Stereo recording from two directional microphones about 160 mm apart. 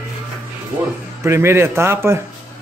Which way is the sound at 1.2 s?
15° right (ahead or behind).